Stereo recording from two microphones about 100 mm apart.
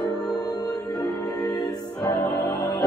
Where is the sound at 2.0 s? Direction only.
20° left (ahead or behind).